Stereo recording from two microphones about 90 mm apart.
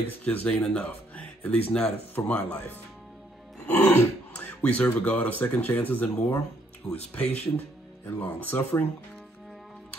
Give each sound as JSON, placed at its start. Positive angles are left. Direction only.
{"t": 0.2, "sound": "speech", "side_deg": 15}